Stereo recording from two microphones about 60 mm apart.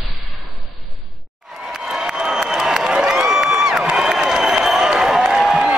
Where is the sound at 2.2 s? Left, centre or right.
Centre.